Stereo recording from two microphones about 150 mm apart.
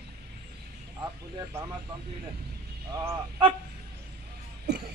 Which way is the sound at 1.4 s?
20° right (ahead or behind).